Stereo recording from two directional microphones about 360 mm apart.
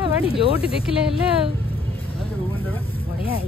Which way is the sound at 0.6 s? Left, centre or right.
Centre.